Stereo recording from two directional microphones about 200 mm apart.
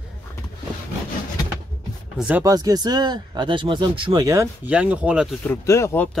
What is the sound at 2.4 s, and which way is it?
Speech, 20° right (ahead or behind).